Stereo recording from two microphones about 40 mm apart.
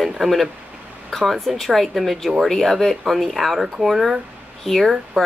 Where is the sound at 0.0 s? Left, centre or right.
Centre.